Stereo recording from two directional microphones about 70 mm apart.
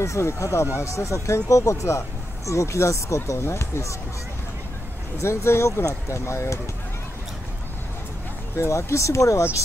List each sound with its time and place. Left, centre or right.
0.0 s speech: left
5.2 s speech: left
8.5 s speech: left